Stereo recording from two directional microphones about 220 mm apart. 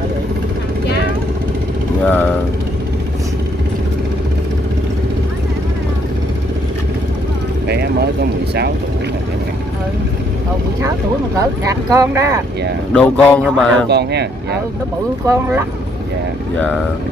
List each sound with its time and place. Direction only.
2.0 s speech: 5° left (ahead or behind)
7.6 s vehicle: 50° right (ahead or behind)
11.3 s speech: 15° right (ahead or behind)
12.9 s speech: 5° left (ahead or behind)
13.8 s speech: 50° right (ahead or behind)
15.2 s speech: 10° right (ahead or behind)